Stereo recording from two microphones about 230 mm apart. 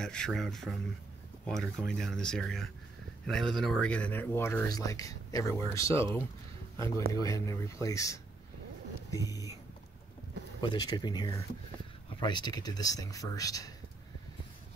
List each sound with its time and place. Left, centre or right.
0.0 s speech: centre
7.2 s speech: centre
10.6 s speech: centre